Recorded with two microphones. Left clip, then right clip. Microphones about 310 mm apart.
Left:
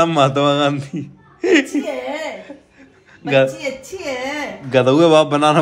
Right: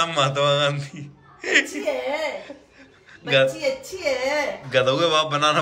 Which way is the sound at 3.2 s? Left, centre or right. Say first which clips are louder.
Left 4 dB; centre.